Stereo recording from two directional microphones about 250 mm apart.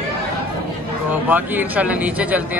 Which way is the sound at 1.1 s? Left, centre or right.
Centre.